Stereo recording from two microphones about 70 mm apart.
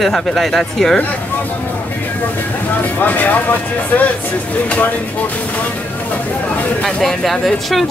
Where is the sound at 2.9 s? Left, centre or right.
Left.